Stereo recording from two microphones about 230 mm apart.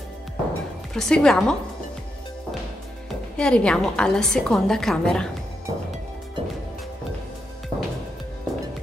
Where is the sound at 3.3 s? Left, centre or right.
Centre.